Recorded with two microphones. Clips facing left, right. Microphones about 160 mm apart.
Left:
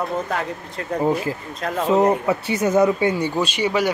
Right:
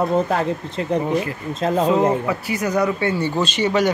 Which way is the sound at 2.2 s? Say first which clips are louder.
Left 2 dB; 25° left (ahead or behind).